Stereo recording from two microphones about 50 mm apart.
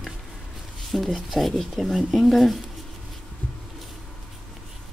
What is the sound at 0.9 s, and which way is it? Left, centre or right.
Speech, centre.